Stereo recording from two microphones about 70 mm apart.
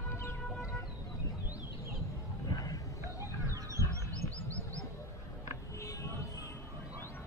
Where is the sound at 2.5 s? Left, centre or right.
Left.